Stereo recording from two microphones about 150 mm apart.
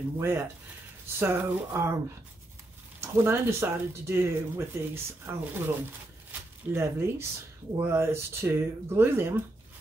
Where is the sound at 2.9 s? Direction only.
15° right (ahead or behind).